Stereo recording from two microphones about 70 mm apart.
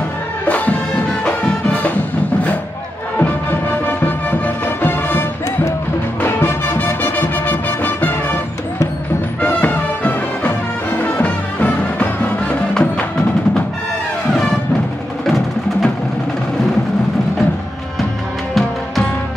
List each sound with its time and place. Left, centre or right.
0.5 s music: left
3.2 s music: left
6.2 s music: left
9.4 s music: left
15.2 s music: centre
18.5 s music: centre